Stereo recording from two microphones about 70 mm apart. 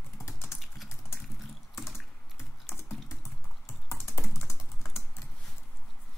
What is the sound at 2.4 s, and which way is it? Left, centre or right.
Typing, left.